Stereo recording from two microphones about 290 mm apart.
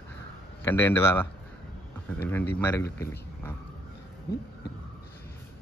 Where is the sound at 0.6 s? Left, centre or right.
Centre.